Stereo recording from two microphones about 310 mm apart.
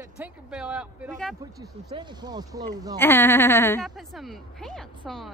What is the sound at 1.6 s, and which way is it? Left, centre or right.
Speech, centre.